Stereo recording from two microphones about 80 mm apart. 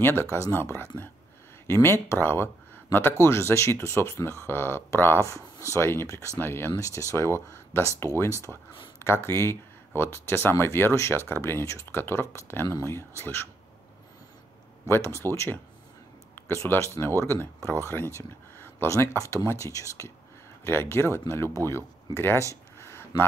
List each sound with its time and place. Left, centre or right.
0.0 s speech: left
5.2 s speech: left
6.7 s speech: left
14.9 s speech: left
20.6 s speech: left
22.8 s a sound: left